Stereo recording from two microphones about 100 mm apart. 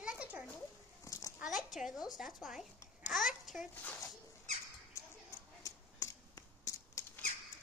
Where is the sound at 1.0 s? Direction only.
35° left (ahead or behind).